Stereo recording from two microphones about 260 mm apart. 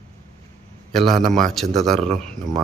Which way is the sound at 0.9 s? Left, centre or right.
Centre.